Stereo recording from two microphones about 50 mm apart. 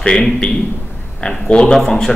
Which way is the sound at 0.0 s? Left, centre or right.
Centre.